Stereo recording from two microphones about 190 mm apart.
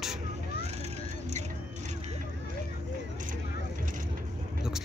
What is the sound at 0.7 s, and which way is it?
Vehicle, 35° right (ahead or behind).